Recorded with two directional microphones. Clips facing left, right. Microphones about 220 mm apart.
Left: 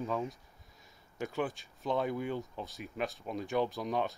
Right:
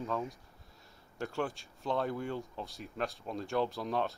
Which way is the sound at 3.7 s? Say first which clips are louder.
Even; centre (ahead or behind).